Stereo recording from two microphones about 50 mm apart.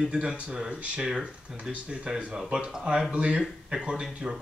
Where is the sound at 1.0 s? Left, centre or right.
Centre.